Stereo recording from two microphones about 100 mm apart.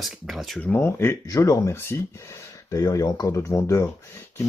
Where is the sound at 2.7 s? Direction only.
40° left (ahead or behind).